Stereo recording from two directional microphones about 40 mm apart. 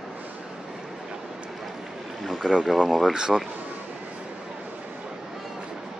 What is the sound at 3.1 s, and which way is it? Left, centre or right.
Speech, centre.